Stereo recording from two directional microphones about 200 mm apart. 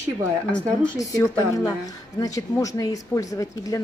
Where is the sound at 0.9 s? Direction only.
15° left (ahead or behind).